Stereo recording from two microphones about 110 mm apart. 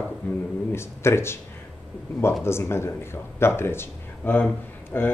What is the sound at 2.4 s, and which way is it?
Speech, 25° left (ahead or behind).